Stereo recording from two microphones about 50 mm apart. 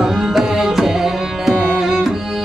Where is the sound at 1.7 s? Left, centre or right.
Centre.